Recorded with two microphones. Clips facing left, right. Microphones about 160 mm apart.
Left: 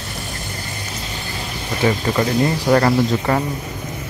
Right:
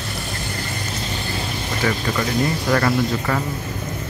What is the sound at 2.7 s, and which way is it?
Speech, 30° left (ahead or behind).